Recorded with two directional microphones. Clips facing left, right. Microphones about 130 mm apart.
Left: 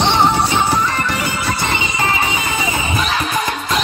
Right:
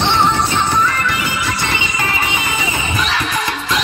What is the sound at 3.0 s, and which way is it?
Music, 35° left (ahead or behind).